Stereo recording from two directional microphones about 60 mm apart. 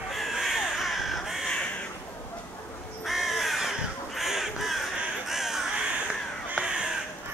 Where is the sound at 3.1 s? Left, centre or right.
Centre.